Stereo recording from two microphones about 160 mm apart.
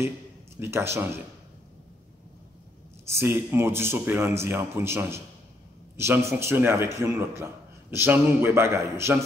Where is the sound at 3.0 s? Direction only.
15° right (ahead or behind).